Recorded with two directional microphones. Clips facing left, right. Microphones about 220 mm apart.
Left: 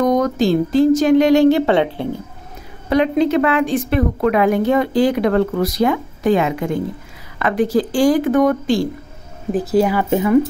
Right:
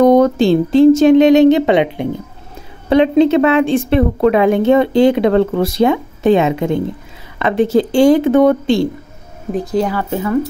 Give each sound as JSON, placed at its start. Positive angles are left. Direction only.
{"t": 0.0, "sound": "a woman's voice", "side_deg": -30}
{"t": 9.5, "sound": "speech", "side_deg": 5}